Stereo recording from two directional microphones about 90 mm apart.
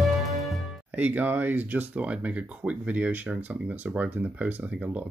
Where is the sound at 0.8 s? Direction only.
15° right (ahead or behind).